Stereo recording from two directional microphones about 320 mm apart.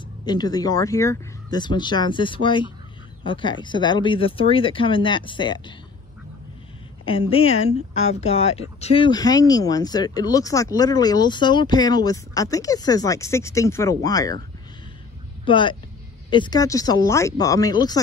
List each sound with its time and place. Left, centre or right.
0.2 s speech: centre
7.1 s speech: centre
15.4 s speech: centre